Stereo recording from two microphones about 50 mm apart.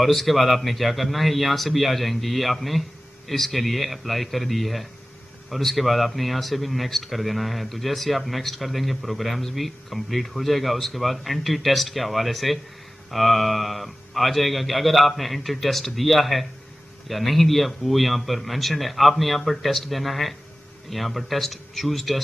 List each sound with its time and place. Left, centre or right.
0.0 s a man's voice: centre